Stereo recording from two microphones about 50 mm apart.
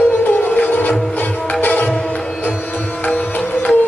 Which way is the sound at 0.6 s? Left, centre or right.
Left.